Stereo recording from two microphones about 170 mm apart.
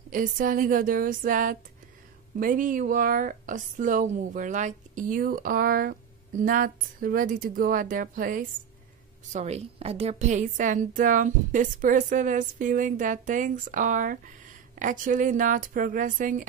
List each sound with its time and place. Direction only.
0.1 s a woman's voice: 55° right (ahead or behind)
9.3 s a woman's voice: 40° right (ahead or behind)